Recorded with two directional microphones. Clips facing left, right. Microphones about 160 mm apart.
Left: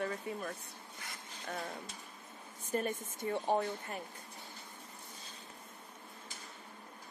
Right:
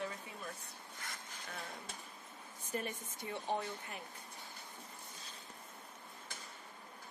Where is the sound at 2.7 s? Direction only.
45° left (ahead or behind).